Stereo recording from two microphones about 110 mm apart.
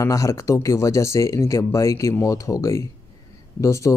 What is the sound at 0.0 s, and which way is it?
Speech, 30° left (ahead or behind).